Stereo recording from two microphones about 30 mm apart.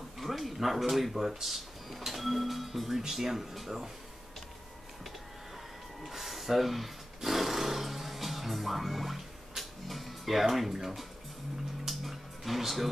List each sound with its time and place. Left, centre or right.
0.2 s speech: centre
6.0 s a sound: centre
9.6 s speech: centre
11.9 s music: centre